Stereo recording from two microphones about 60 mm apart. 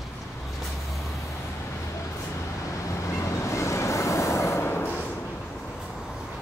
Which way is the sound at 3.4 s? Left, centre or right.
Left.